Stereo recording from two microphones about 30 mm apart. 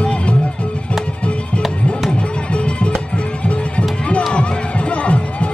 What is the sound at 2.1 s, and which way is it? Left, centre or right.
Music, left.